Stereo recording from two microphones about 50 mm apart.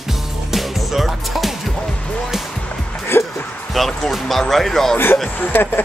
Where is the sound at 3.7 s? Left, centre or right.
Centre.